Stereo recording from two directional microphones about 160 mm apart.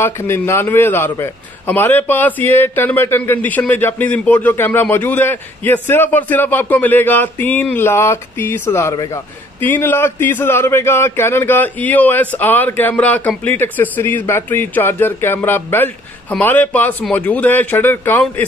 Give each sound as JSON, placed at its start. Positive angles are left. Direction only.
{"t": 0.0, "sound": "speech", "side_deg": 15}